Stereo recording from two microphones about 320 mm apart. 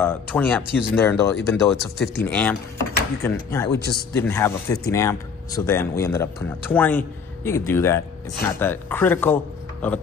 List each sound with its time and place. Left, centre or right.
0.0 s speech: centre
3.7 s a man's voice: left
4.2 s speech: centre